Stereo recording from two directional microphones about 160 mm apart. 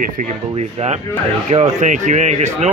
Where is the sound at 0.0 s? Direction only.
50° right (ahead or behind).